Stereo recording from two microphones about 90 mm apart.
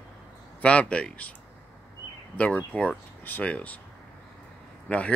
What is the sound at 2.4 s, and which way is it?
Speech, 15° left (ahead or behind).